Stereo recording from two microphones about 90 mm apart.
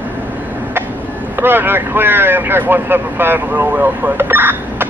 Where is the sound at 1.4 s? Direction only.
25° right (ahead or behind).